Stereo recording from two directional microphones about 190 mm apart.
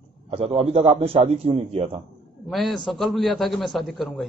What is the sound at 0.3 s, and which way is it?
A man's voice, 30° right (ahead or behind).